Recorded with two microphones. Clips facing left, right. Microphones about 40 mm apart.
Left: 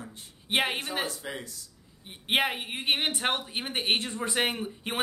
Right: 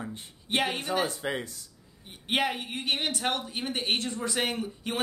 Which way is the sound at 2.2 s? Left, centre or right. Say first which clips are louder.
Left 1 dB; left.